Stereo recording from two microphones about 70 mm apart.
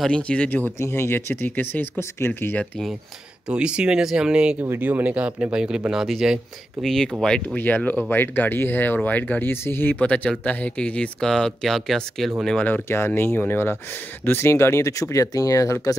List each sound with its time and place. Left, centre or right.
0.1 s speech: centre
0.7 s speech: left
2.0 s speech: left
3.4 s speech: centre
4.6 s speech: right; by 6.4 s centre
6.8 s speech: centre
7.5 s speech: left; by 12.3 s centre
12.8 s speech: left